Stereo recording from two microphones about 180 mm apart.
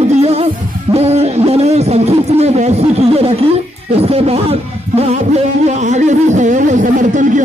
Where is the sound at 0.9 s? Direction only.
35° right (ahead or behind).